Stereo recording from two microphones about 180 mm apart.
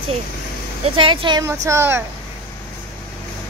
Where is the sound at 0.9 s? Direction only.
30° right (ahead or behind).